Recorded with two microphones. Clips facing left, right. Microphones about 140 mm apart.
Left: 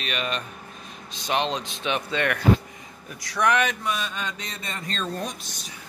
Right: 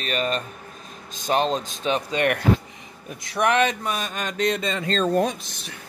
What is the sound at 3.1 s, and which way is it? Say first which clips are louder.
Speech: right 2 dB; 25° right (ahead or behind).